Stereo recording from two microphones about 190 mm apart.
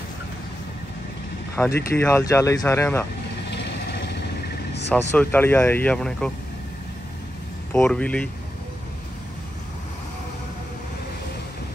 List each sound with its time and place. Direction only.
1.5 s speech: 10° left (ahead or behind)
3.4 s vehicle: 65° left (ahead or behind)
5.1 s speech: 10° left (ahead or behind)
7.7 s speech: 5° left (ahead or behind)